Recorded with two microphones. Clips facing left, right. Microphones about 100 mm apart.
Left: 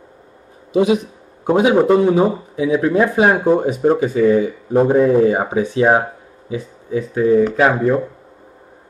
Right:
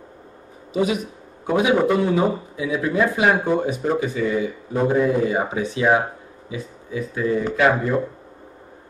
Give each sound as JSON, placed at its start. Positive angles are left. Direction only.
{"t": 0.7, "sound": "speech", "side_deg": 25}
{"t": 3.5, "sound": "speech", "side_deg": 25}
{"t": 3.8, "sound": "speech", "side_deg": 40}
{"t": 7.3, "sound": "speech", "side_deg": 40}